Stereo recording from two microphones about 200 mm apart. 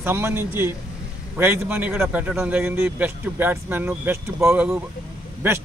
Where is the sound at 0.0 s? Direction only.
10° right (ahead or behind).